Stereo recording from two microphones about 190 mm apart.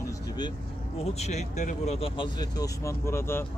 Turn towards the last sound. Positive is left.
turn(degrees=10)  # may be behind; listen again after turning